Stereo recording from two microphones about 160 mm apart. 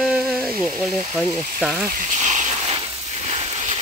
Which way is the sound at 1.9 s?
50° right (ahead or behind).